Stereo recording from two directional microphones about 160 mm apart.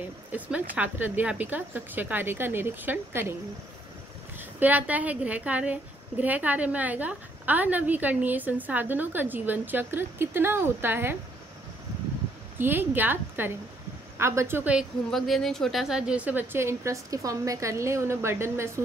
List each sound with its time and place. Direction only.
0.3 s a woman's voice: 10° right (ahead or behind)
4.4 s a woman's voice: 10° right (ahead or behind)
12.5 s a woman's voice: 15° right (ahead or behind)